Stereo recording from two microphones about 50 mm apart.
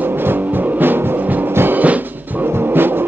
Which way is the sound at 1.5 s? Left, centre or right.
Right.